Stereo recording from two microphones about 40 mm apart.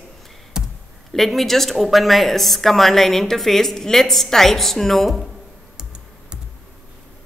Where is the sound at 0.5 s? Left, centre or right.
Centre.